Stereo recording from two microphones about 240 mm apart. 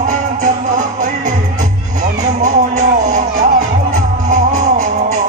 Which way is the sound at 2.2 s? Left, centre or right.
Right.